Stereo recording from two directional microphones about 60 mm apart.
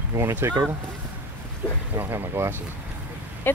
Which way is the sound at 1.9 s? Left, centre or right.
Right.